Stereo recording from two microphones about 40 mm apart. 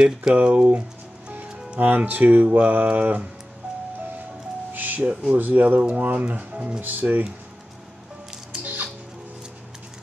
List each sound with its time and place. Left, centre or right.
0.4 s speech: right
1.8 s speech: right
4.7 s speech: right
6.8 s speech: right